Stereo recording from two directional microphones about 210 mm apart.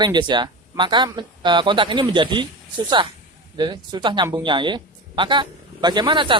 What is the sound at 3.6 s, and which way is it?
Speech, 20° right (ahead or behind).